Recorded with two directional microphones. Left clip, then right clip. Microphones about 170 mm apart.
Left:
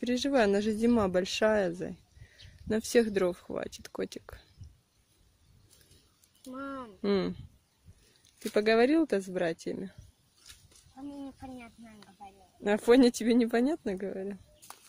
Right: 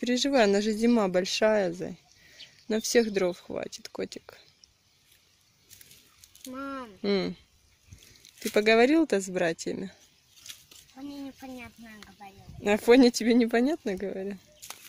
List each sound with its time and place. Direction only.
0.0 s speech: 5° left (ahead or behind)
6.4 s speech: centre (ahead or behind)
7.0 s speech: 15° left (ahead or behind)
8.4 s speech: 5° left (ahead or behind)